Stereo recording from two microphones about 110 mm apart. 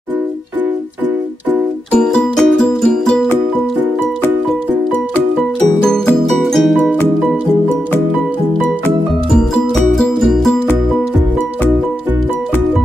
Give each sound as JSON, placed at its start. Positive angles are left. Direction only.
{"t": 1.9, "sound": "music", "side_deg": 10}
{"t": 5.9, "sound": "music", "side_deg": 5}
{"t": 9.3, "sound": "music", "side_deg": 5}